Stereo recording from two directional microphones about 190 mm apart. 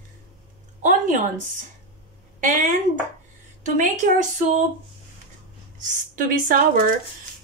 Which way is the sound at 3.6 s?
40° right (ahead or behind).